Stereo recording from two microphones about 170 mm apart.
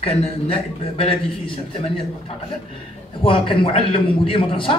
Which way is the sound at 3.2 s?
30° left (ahead or behind).